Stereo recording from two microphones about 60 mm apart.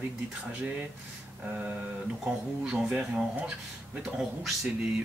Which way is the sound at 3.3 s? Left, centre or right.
Right.